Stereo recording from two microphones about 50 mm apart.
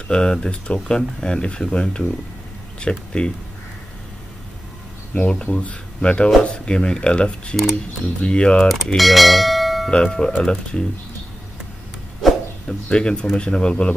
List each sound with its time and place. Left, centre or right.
0.1 s speech: centre
5.2 s speech: left
8.6 s bell: centre
9.8 s speech: centre
12.6 s speech: centre